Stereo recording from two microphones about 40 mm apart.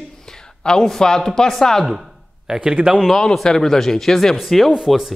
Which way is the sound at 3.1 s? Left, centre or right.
Centre.